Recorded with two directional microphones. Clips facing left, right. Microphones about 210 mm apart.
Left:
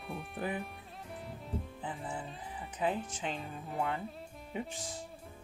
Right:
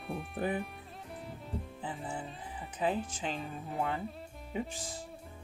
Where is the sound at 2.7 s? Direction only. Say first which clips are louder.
Right 1 dB; 30° right (ahead or behind).